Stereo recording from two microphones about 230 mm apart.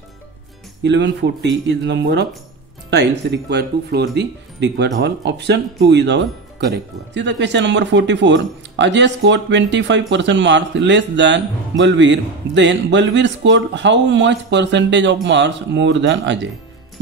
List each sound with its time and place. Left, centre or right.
0.8 s speech: right